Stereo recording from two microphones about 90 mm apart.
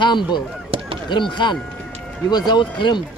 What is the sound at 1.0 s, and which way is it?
Speech, 60° left (ahead or behind).